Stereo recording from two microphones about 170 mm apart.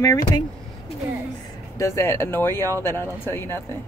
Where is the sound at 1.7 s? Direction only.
15° left (ahead or behind).